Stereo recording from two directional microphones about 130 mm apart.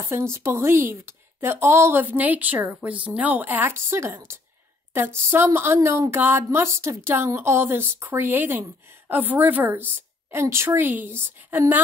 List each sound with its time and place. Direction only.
0.0 s a woman's voice: 20° right (ahead or behind)